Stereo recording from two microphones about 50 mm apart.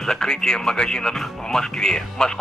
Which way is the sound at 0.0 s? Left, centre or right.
Centre.